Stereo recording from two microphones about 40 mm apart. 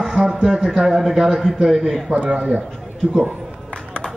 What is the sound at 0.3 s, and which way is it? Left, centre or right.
Speech, right.